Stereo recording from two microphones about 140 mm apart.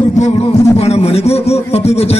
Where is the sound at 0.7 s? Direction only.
50° left (ahead or behind).